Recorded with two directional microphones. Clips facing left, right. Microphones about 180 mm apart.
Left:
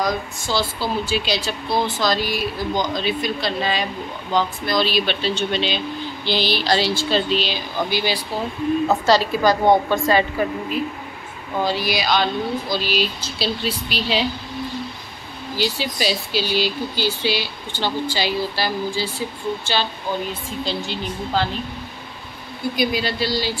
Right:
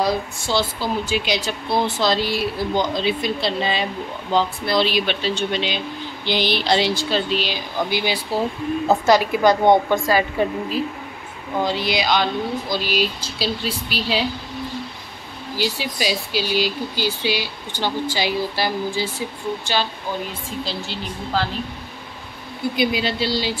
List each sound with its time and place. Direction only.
0.0 s speech: 25° right (ahead or behind)
4.9 s speech: 15° right (ahead or behind)
9.8 s speech: 10° right (ahead or behind)
11.6 s speech: 20° right (ahead or behind)
15.5 s speech: 10° right (ahead or behind)
20.6 s a woman's voice: 5° right (ahead or behind)
22.8 s speech: 20° right (ahead or behind)